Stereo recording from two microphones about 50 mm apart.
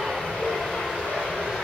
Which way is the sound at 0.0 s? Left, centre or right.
Centre.